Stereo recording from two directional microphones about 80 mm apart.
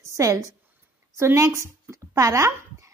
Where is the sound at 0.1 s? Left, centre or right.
Right.